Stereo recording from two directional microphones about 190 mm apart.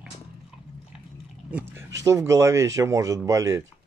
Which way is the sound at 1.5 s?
10° right (ahead or behind).